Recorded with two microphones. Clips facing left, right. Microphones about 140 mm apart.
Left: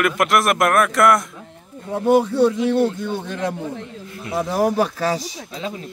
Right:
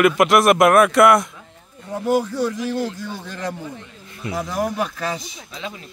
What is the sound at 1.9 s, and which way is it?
Speech, 25° left (ahead or behind).